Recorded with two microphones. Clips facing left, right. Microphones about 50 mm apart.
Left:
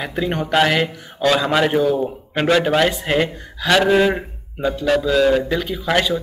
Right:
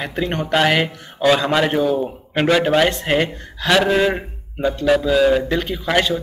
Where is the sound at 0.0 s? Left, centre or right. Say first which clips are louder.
Even; centre.